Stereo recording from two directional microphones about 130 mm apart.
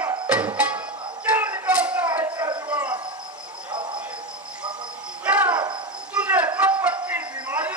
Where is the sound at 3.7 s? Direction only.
35° right (ahead or behind).